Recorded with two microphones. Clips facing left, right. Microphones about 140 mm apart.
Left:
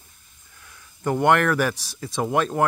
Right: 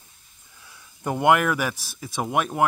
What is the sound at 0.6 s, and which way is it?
Speech, 15° right (ahead or behind).